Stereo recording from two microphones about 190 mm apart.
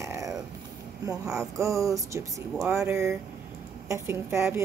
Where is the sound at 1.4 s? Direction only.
15° right (ahead or behind).